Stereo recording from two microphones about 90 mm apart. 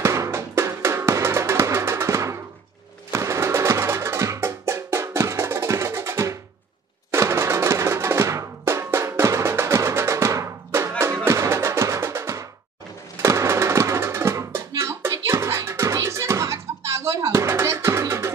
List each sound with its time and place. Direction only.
0.0 s drum: 35° right (ahead or behind)
3.1 s music: 35° right (ahead or behind)
7.1 s drum: 30° right (ahead or behind)
13.2 s a sound: 30° right (ahead or behind)
14.7 s music: 35° right (ahead or behind)